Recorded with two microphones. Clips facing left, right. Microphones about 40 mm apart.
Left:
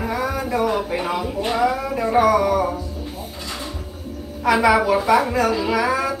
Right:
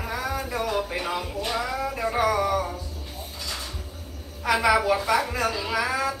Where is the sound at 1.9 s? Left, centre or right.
Centre.